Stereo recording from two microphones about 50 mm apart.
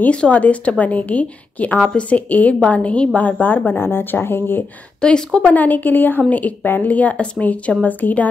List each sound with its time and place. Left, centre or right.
0.1 s a woman's voice: left
5.0 s speech: centre
5.5 s a woman's voice: left